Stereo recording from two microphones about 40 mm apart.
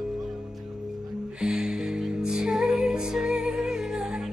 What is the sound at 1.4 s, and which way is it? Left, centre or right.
Music, centre.